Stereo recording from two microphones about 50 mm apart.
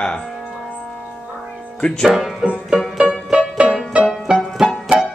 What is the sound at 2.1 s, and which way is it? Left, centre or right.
Speech, centre.